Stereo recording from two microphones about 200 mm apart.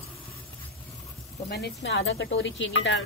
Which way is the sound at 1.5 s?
60° left (ahead or behind).